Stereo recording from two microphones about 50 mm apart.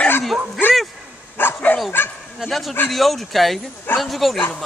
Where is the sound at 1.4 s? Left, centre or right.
Left.